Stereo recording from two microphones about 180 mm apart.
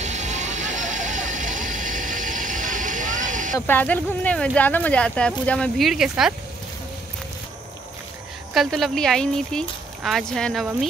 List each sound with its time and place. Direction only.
0.0 s vehicle: 40° right (ahead or behind)
3.5 s speech: 10° left (ahead or behind)
8.5 s speech: centre (ahead or behind)